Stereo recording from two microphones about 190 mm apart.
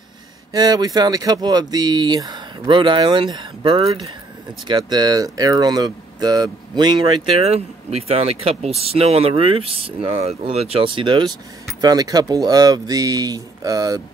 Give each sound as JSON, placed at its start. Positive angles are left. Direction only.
{"t": 0.5, "sound": "speech", "side_deg": -20}